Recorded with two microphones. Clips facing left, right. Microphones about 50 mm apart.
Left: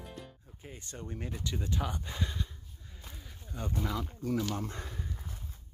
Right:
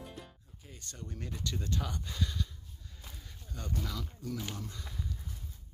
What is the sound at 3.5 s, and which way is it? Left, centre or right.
Speech, centre.